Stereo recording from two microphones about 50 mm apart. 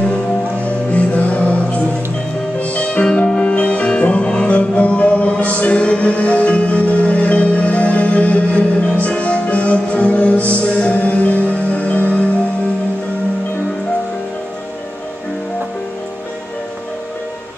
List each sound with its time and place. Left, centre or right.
0.7 s music: left